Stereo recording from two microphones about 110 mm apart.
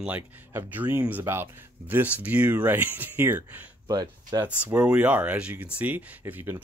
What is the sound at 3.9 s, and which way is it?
Speech, 35° right (ahead or behind).